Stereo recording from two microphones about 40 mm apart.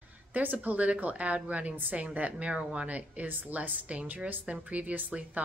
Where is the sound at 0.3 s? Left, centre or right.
Right.